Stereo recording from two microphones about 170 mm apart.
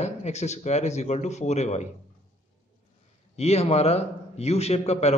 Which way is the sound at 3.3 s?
40° left (ahead or behind).